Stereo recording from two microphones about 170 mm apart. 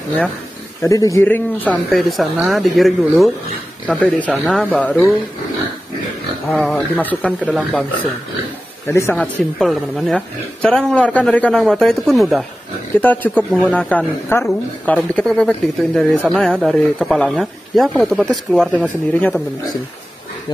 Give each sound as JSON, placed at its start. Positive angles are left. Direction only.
{"t": 0.8, "sound": "speech", "side_deg": 20}
{"t": 1.9, "sound": "speech", "side_deg": 0}
{"t": 6.5, "sound": "speech", "side_deg": 0}
{"t": 9.1, "sound": "speech", "side_deg": 0}
{"t": 12.9, "sound": "speech", "side_deg": 10}